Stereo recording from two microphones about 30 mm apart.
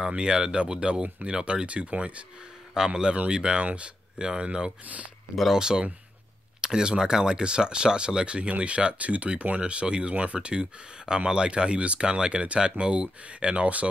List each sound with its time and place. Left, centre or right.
0.0 s speech: right
2.9 s speech: right
5.6 s speech: right
8.4 s speech: right